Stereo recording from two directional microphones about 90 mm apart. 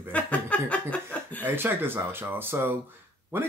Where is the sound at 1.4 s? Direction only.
25° right (ahead or behind).